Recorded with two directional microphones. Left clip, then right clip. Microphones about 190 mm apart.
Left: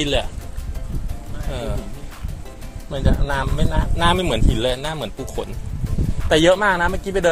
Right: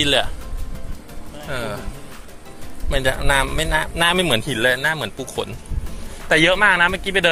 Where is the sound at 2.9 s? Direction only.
10° right (ahead or behind).